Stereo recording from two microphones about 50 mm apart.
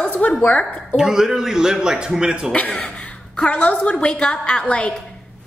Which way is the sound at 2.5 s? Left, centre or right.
Left.